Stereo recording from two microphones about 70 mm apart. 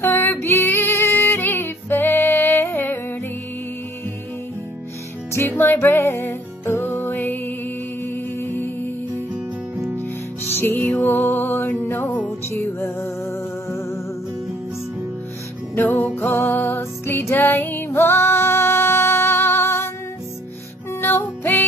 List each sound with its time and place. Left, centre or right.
0.0 s female singing: left
5.5 s music: left
10.4 s music: left
15.7 s music: left
21.0 s music: left